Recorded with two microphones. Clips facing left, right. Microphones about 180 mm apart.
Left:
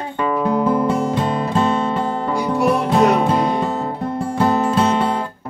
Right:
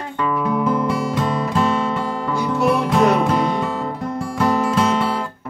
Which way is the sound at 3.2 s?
30° left (ahead or behind).